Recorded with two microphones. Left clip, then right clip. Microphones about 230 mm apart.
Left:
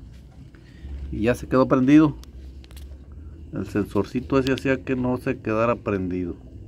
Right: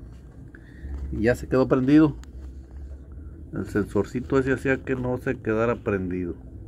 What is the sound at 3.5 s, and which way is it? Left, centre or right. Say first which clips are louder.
Speech: even; centre.